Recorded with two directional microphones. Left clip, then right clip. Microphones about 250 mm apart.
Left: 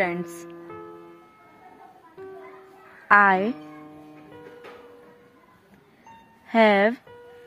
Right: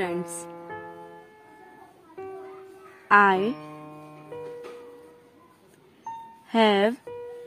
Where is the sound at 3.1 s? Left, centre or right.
Centre.